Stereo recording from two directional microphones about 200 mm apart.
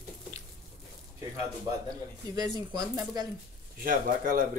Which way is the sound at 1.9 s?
20° right (ahead or behind).